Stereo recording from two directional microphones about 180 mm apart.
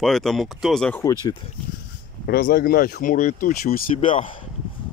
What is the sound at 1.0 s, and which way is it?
Speech, 25° left (ahead or behind).